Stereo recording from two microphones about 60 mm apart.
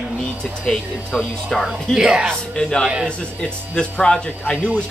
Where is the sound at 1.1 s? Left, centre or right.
Centre.